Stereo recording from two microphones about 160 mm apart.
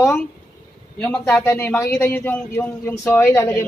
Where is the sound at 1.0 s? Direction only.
5° left (ahead or behind).